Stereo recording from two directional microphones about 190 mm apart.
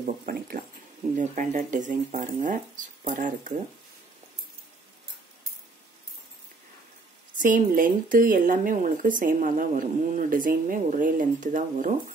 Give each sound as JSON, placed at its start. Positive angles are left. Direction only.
{"t": 0.0, "sound": "speech", "side_deg": -45}
{"t": 7.3, "sound": "speech", "side_deg": -45}